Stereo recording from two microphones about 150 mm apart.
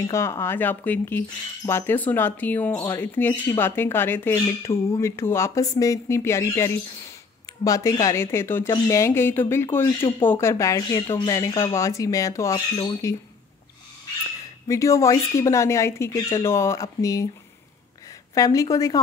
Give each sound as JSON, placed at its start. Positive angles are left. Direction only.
{"t": 0.0, "sound": "speech", "side_deg": 20}
{"t": 14.7, "sound": "speech", "side_deg": 20}
{"t": 18.3, "sound": "speech", "side_deg": 20}